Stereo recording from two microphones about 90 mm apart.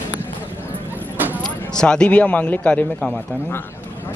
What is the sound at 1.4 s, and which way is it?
Speech, 10° left (ahead or behind).